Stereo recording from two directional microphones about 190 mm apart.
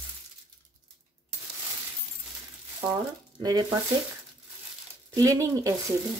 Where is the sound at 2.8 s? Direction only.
15° right (ahead or behind).